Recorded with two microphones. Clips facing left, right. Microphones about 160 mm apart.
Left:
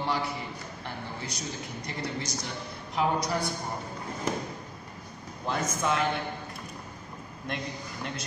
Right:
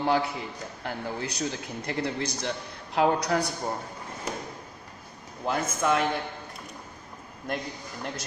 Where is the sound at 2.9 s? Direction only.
80° right.